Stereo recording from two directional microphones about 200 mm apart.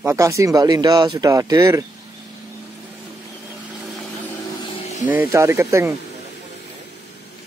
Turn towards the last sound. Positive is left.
turn(degrees=-15)  # may be behind; listen again after turning